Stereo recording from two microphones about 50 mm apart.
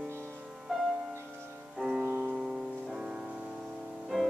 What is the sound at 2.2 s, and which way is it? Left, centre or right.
Music, centre.